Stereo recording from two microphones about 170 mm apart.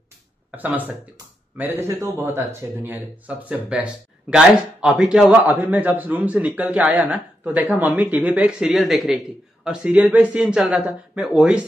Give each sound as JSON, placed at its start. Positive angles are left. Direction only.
{"t": 0.5, "sound": "speech", "side_deg": -10}